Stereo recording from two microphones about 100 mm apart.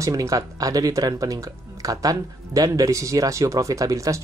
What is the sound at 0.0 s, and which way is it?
Speech, 35° right (ahead or behind).